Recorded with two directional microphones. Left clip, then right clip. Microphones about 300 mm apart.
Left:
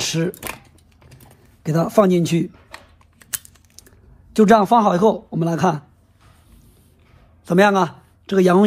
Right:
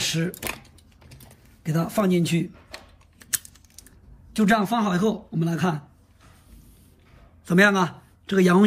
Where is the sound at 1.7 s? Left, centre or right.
Centre.